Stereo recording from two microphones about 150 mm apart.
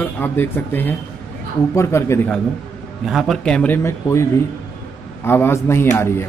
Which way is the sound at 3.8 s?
20° left (ahead or behind).